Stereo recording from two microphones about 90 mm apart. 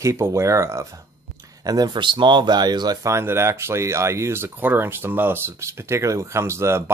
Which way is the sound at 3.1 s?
30° right (ahead or behind).